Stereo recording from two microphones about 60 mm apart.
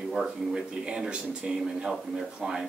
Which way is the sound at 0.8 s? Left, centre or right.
Centre.